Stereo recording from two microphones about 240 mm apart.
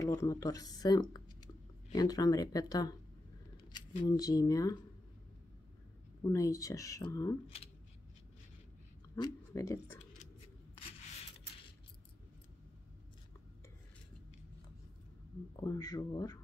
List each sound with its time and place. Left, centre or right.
0.0 s speech: centre
6.2 s speech: centre
9.1 s speech: centre
15.5 s speech: centre